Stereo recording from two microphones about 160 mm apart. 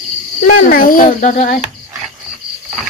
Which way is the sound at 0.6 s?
60° left (ahead or behind).